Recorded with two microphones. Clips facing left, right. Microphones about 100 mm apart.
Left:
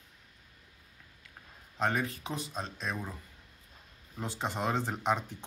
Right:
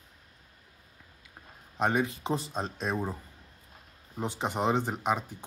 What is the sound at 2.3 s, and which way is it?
Speech, 30° right (ahead or behind).